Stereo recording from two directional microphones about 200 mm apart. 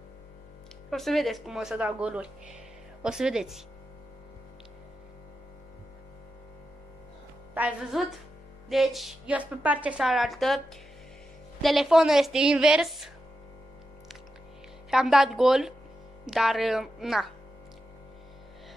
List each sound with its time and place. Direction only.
0.8 s a woman's voice: centre (ahead or behind)
7.5 s a woman's voice: 5° right (ahead or behind)
14.9 s a woman's voice: centre (ahead or behind)